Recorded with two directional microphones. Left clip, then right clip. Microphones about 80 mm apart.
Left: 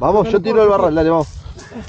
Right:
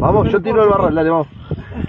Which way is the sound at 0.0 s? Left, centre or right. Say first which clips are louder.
Even; left.